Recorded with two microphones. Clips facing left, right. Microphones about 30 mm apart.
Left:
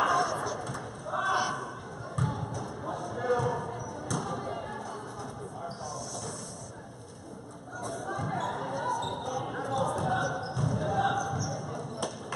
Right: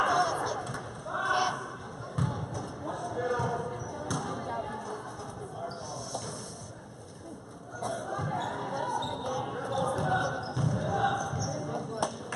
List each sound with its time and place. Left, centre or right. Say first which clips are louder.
0.1 s a sound: right 1 dB; right
2.2 s basketball bounce: left 2 dB; centre
4.1 s thump: left 1 dB; centre
8.3 s a sound: left 2 dB; centre
9.8 s basketball bounce: even; centre
10.6 s basketball bounce: even; centre